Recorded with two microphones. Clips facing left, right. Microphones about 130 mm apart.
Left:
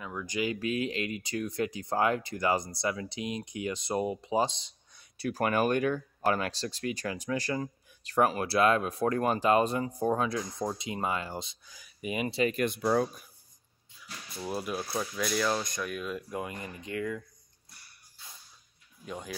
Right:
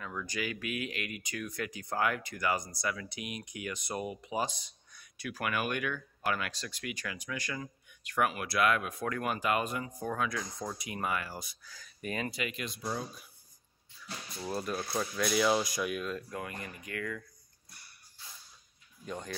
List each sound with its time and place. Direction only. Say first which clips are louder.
0.0 s speech: left 5 dB; 15° left (ahead or behind)
5.1 s speech: left 7 dB; 35° left (ahead or behind); by 12.3 s 10° left (ahead or behind)
12.3 s speech: left 9 dB; 30° left (ahead or behind)
12.5 s speech: left 10 dB; 60° left (ahead or behind)
14.3 s speech: left 2 dB; 5° left (ahead or behind)
16.3 s speech: left 4 dB; 20° left (ahead or behind)
19.0 s speech: even; 5° left (ahead or behind)